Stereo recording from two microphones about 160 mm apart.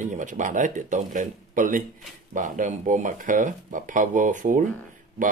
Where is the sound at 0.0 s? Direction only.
55° right (ahead or behind).